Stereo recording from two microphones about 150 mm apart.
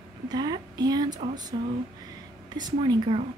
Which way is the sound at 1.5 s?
35° right (ahead or behind).